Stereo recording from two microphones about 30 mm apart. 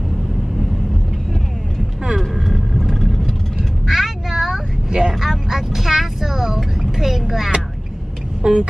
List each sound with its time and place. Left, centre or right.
2.1 s vehicle: centre
3.8 s quack: centre
5.2 s vehicle: centre
7.0 s speech: centre
8.4 s speech: right